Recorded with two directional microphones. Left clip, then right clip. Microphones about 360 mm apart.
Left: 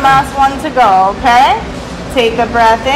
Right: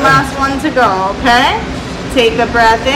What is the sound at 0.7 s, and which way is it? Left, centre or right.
A woman's voice, centre.